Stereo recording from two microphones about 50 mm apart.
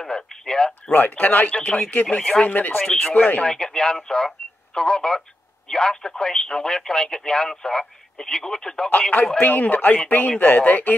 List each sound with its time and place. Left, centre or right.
0.0 s speech: centre
0.9 s speech: left
2.8 s speech: centre
3.4 s speech: centre
9.4 s speech: left